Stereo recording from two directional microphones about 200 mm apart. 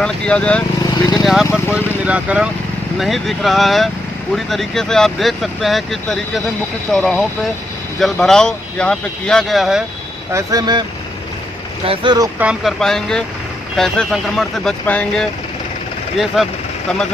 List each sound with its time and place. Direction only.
0.0 s speech: 5° left (ahead or behind)
10.3 s speech: 20° right (ahead or behind)
12.4 s speech: 5° right (ahead or behind)
16.4 s speech: centre (ahead or behind)